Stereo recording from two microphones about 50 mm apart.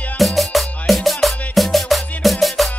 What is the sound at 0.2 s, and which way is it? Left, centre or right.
Music, centre.